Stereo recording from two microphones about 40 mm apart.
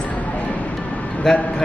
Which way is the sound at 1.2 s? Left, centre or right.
Centre.